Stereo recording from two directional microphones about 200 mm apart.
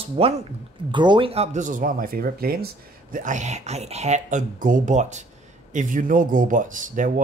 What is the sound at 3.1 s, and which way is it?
Speech, 40° right (ahead or behind).